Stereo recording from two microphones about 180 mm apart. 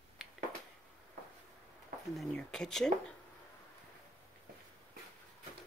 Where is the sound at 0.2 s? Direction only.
5° right (ahead or behind).